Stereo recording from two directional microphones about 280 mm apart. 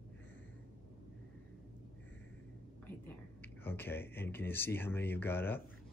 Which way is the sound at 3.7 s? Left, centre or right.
Centre.